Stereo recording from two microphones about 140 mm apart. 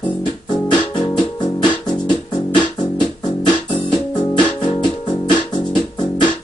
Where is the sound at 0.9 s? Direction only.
30° left (ahead or behind).